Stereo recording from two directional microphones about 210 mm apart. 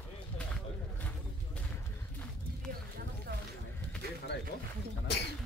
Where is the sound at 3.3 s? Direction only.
50° right (ahead or behind).